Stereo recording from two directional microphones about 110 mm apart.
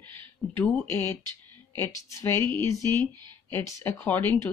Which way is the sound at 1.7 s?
25° left (ahead or behind).